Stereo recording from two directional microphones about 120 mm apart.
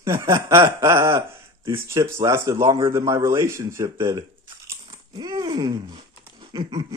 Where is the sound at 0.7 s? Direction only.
25° right (ahead or behind).